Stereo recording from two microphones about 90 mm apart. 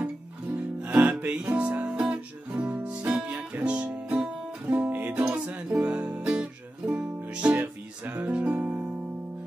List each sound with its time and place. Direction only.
0.6 s music: 15° right (ahead or behind)